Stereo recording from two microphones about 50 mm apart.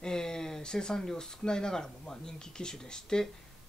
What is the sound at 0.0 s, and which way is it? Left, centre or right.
Speech, centre.